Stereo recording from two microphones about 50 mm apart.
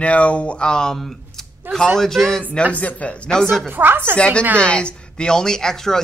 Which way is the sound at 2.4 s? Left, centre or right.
Left.